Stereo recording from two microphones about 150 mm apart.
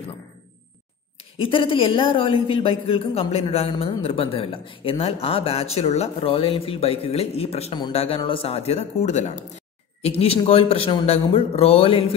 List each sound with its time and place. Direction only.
1.4 s a man's voice: 35° left (ahead or behind)